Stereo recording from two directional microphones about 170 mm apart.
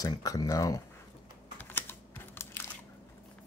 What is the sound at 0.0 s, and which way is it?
Speech, 20° left (ahead or behind).